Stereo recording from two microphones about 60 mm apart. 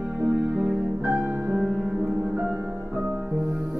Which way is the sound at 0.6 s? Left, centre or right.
Right.